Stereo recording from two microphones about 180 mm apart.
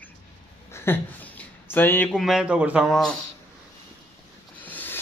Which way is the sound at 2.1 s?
Centre (ahead or behind).